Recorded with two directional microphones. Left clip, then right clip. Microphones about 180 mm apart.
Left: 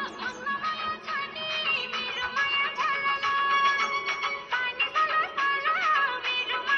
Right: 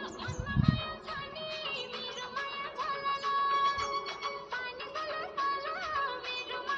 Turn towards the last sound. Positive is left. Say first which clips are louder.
# left 9 dB
turn(degrees=-20)  # may be behind; listen again after turning